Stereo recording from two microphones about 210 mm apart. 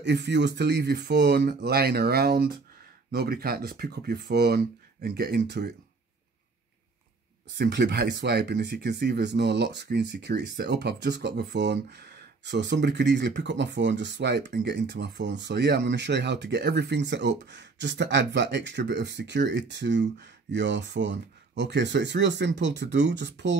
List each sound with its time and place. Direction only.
0.0 s speech: 55° right (ahead or behind)
7.5 s speech: 50° right (ahead or behind)